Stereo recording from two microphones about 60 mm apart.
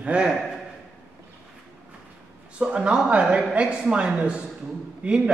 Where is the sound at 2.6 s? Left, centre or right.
Centre.